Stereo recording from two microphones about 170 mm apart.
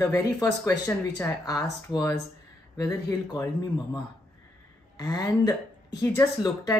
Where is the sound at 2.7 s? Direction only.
20° left (ahead or behind).